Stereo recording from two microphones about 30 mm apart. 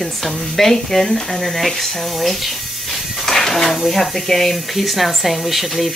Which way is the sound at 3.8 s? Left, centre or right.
Centre.